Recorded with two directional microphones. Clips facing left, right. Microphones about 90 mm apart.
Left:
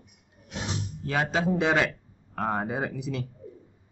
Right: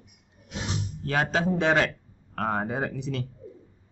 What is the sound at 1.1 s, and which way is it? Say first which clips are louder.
Speech: right 1 dB; 5° left (ahead or behind).